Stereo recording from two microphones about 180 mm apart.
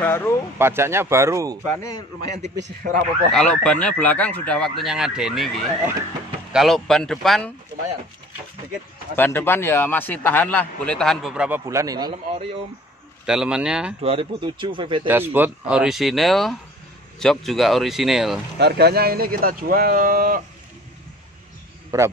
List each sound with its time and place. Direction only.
0.0 s a man's voice: 15° left (ahead or behind)
0.6 s speech: 15° right (ahead or behind)
1.6 s a man's voice: 10° left (ahead or behind)
2.5 s speech: 60° right (ahead or behind)
3.3 s speech: 5° left (ahead or behind)
9.1 s a man's voice: 10° left (ahead or behind); by 11.6 s 5° right (ahead or behind)
11.6 s speech: 20° right (ahead or behind)
13.2 s speech: 5° right (ahead or behind)
14.0 s speech: 30° right (ahead or behind)
15.0 s speech: 10° right (ahead or behind)
18.6 s speech: 65° right (ahead or behind)
21.9 s speech: 15° right (ahead or behind)